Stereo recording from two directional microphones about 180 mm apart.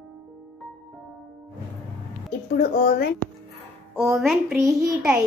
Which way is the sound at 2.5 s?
60° left (ahead or behind).